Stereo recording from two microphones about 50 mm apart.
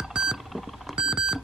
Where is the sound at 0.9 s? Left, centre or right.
Centre.